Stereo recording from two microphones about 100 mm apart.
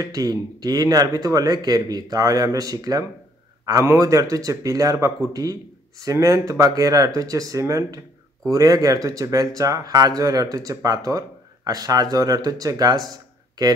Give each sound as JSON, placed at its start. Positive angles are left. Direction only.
{"t": 0.0, "sound": "speech", "side_deg": -40}